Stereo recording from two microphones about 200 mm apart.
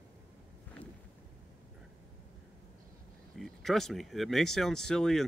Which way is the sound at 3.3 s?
Centre (ahead or behind).